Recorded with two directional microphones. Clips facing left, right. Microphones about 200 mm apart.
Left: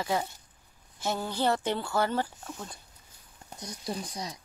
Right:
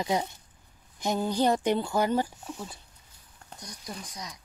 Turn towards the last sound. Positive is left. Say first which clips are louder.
# left 5 dB
turn(degrees=30)  # may be behind; listen again after turning